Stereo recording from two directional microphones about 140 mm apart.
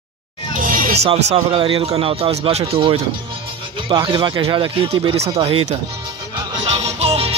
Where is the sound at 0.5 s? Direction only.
80° right.